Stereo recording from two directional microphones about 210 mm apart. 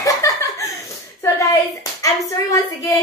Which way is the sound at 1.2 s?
15° left (ahead or behind).